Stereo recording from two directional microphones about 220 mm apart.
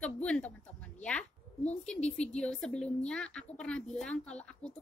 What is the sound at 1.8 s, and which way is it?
A woman's voice, 5° left (ahead or behind).